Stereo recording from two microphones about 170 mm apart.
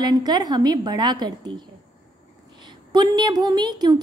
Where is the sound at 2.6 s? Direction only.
25° right (ahead or behind).